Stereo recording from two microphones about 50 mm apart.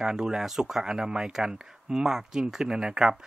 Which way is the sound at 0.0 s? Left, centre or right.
Centre.